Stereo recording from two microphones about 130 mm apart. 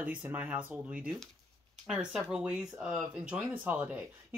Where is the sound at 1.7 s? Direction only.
5° right (ahead or behind).